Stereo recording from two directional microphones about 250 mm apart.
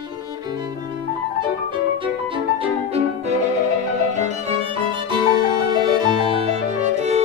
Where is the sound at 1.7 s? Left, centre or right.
Right.